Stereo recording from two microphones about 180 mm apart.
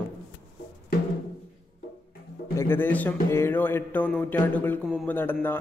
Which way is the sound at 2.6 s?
10° left (ahead or behind).